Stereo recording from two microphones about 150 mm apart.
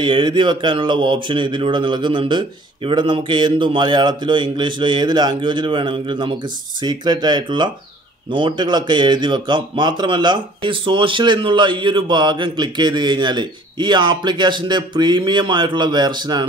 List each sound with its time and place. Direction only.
0.0 s a man's voice: 30° right (ahead or behind)